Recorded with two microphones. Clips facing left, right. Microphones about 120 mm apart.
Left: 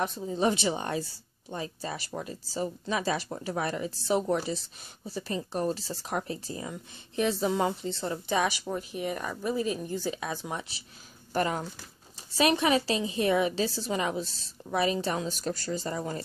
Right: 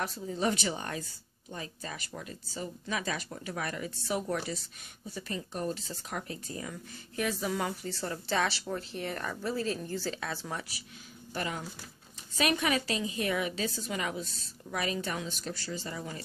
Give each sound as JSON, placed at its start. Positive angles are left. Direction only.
{"t": 0.0, "sound": "a woman's voice", "side_deg": 20}
{"t": 11.3, "sound": "a woman's voice", "side_deg": 40}